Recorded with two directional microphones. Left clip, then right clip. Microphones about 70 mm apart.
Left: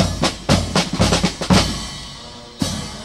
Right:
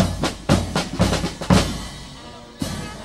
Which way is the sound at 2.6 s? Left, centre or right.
Centre.